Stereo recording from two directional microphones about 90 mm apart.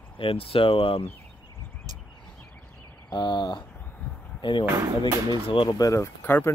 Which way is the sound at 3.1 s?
55° left (ahead or behind).